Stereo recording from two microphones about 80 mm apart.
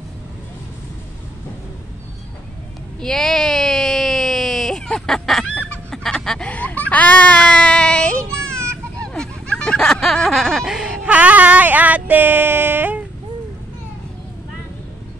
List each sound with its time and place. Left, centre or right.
3.0 s baby cry: centre
6.5 s baby cry: centre
9.0 s a sound: centre; by 13.0 s right